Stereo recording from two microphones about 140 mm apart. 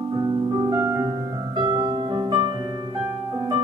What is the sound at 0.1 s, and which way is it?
Music, 30° right (ahead or behind).